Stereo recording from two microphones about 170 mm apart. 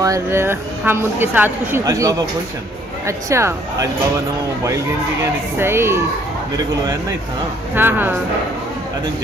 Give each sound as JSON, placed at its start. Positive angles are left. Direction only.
{"t": 0.0, "sound": "a woman's voice", "side_deg": -15}
{"t": 5.6, "sound": "a woman's voice", "side_deg": -15}
{"t": 7.7, "sound": "a woman's voice", "side_deg": -10}